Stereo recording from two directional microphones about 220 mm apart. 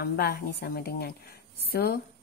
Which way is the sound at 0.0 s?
45° left (ahead or behind).